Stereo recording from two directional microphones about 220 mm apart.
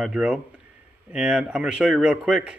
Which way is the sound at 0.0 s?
5° right (ahead or behind).